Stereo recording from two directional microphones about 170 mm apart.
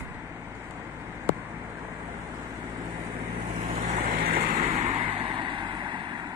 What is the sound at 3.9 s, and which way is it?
Vehicle, 45° right (ahead or behind).